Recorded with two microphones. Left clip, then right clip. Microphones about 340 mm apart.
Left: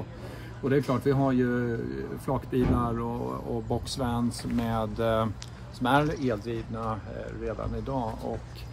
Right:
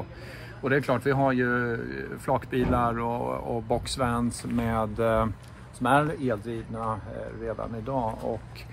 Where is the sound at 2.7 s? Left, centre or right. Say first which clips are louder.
Right 4 dB; centre.